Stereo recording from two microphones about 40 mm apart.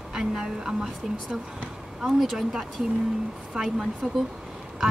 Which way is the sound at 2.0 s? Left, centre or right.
Centre.